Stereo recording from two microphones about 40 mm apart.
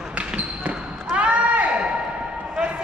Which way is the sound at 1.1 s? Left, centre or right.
Right.